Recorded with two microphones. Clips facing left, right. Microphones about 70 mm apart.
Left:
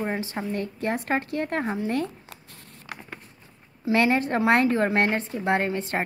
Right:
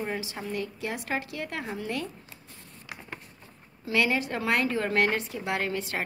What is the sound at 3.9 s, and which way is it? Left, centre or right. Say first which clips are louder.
A woman's voice: left 5 dB; left.